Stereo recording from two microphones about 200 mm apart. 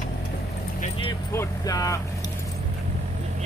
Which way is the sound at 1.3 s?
20° left (ahead or behind).